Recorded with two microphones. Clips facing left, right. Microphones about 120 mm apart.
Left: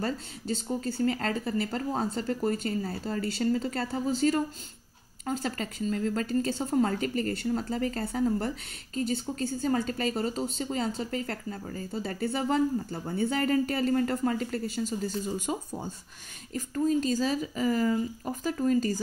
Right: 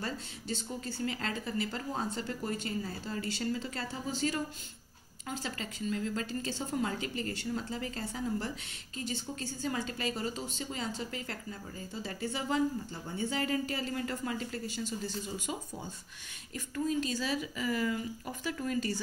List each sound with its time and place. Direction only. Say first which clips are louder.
0.7 s speech: left 10 dB; 45° left (ahead or behind)
16.5 s speech: left 6 dB; 40° left (ahead or behind)